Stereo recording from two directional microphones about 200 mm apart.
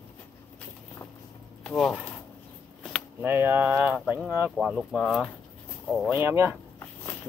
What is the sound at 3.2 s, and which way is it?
Speech, 10° right (ahead or behind).